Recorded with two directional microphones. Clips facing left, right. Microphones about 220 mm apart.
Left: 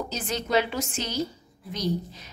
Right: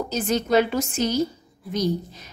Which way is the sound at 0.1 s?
45° right (ahead or behind).